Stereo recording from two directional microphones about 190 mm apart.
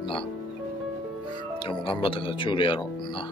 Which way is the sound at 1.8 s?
25° left (ahead or behind).